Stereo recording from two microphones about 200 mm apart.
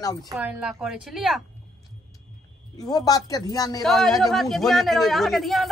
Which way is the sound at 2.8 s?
20° left (ahead or behind).